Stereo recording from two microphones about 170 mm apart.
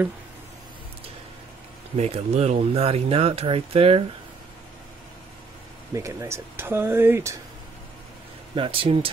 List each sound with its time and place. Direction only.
2.0 s speech: 40° right (ahead or behind)
5.9 s speech: 15° right (ahead or behind)
8.5 s speech: 30° right (ahead or behind)